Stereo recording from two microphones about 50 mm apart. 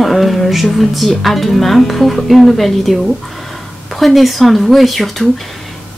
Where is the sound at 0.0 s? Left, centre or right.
Centre.